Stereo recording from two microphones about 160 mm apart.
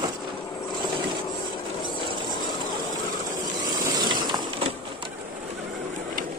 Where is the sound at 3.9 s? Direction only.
25° right (ahead or behind).